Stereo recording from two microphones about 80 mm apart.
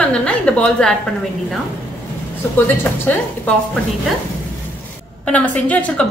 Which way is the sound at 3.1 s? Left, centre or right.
Left.